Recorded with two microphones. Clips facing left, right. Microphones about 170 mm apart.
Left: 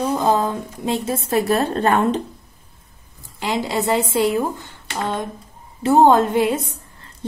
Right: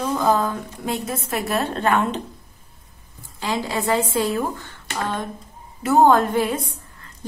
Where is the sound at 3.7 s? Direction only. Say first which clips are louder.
Left 1 dB; 25° left (ahead or behind).